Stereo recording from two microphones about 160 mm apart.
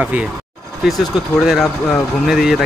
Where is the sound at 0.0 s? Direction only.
10° right (ahead or behind).